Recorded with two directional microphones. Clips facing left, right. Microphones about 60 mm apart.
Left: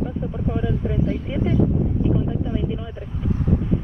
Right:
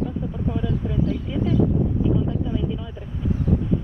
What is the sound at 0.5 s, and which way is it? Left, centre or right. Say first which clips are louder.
Speech: left 2 dB; left.